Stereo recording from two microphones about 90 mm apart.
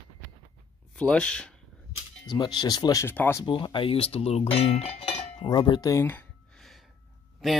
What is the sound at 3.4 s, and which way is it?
Speech, 60° left (ahead or behind).